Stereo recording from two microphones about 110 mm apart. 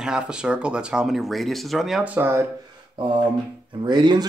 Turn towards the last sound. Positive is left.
turn(degrees=-40)  # may be behind; listen again after turning